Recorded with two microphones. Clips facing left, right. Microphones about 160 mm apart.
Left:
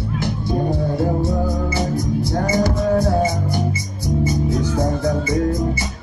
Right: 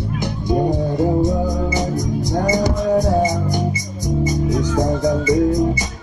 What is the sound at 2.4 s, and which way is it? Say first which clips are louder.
Music: right 1 dB; 15° right (ahead or behind).